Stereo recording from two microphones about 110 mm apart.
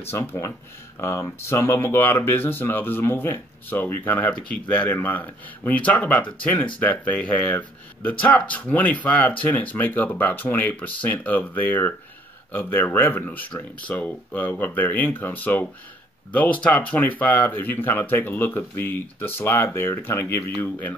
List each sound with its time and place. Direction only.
0.1 s speech: 20° left (ahead or behind)